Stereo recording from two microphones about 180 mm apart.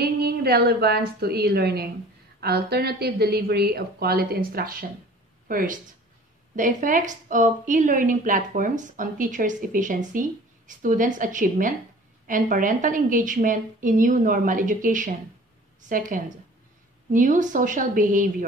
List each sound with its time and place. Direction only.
0.0 s a woman's voice: 60° right (ahead or behind)